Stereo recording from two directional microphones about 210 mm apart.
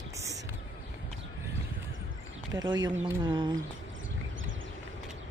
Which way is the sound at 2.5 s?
20° right (ahead or behind).